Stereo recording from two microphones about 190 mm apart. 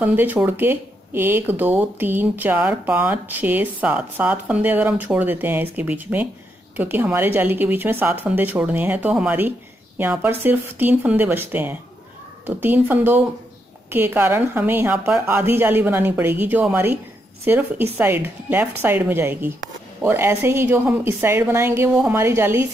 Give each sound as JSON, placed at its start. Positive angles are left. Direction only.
{"t": 0.0, "sound": "speech", "side_deg": -10}